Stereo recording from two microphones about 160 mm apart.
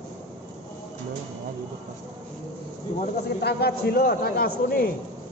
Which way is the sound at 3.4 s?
85° left.